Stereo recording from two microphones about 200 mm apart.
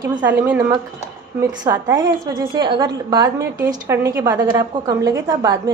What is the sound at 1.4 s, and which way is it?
A woman's voice, 20° right (ahead or behind).